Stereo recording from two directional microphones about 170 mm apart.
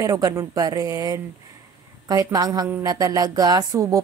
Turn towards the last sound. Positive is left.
turn(degrees=-20)  # may be behind; listen again after turning